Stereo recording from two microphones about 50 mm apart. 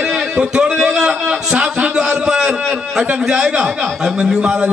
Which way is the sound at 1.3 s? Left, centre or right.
Centre.